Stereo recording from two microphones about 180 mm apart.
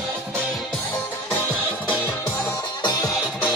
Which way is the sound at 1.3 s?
10° left (ahead or behind).